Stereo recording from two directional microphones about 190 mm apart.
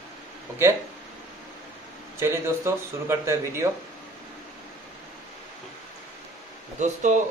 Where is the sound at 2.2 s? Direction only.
15° right (ahead or behind).